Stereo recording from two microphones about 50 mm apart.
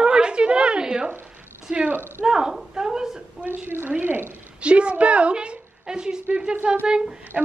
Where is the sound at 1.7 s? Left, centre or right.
Right.